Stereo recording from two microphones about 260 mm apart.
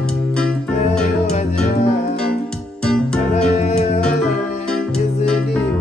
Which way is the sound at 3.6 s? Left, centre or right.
Left.